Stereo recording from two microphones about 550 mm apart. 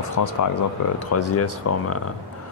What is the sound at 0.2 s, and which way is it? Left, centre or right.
Speech, left.